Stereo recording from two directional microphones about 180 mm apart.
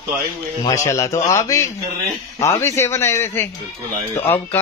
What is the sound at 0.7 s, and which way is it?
Speech, 15° left (ahead or behind).